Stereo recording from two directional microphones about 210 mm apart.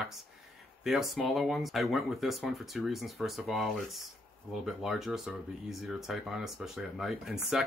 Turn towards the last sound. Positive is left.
turn(degrees=0)  # may be behind; listen again after turning